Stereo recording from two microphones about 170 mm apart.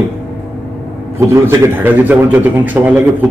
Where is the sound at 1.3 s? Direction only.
15° right (ahead or behind).